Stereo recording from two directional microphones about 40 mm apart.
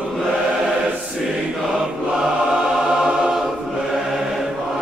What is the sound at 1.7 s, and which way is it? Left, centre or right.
Choir, centre.